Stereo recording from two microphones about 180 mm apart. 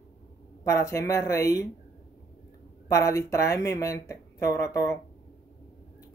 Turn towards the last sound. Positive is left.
turn(degrees=15)  # may be behind; listen again after turning